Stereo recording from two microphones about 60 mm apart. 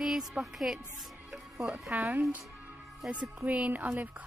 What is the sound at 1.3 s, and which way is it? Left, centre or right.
Music, centre.